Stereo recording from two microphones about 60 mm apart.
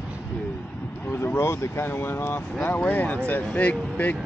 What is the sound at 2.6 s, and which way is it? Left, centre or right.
Speech, left.